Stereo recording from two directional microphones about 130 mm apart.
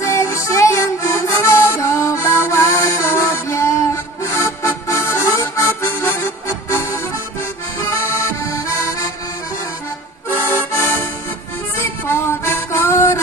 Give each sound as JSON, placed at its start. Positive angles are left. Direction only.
{"t": 0.0, "sound": "music", "side_deg": 20}
{"t": 10.3, "sound": "accordion", "side_deg": 20}
{"t": 11.8, "sound": "music", "side_deg": 20}